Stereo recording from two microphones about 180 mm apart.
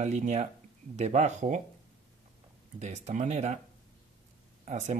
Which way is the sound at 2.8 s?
40° right (ahead or behind).